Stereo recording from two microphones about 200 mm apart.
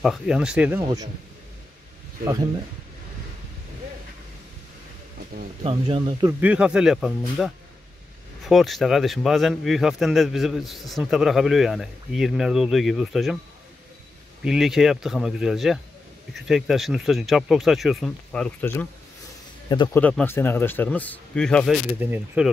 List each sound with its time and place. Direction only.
0.0 s a man's voice: 5° right (ahead or behind)
5.6 s speech: 30° right (ahead or behind)
6.4 s a man's voice: 5° right (ahead or behind)
14.4 s a man's voice: 5° right (ahead or behind)
19.7 s speech: 20° left (ahead or behind)
20.0 s speech: 5° left (ahead or behind)
22.0 s speech: 10° right (ahead or behind)